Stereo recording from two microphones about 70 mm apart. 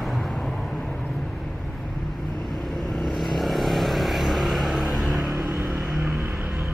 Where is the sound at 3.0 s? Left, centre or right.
Centre.